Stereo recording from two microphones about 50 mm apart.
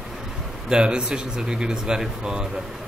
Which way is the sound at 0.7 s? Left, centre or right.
Right.